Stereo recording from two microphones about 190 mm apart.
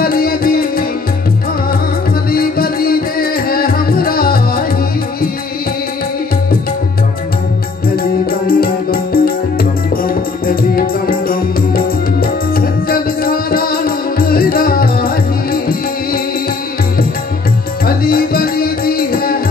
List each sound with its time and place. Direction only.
0.0 s music: 50° left (ahead or behind)
2.3 s music: 50° left (ahead or behind)
7.9 s music: 50° left (ahead or behind)
17.8 s music: 50° left (ahead or behind)